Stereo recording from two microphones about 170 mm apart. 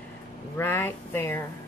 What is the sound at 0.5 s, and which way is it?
Speech, 15° left (ahead or behind).